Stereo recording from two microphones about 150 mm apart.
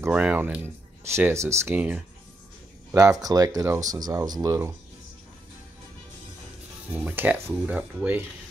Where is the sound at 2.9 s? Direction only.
20° right (ahead or behind).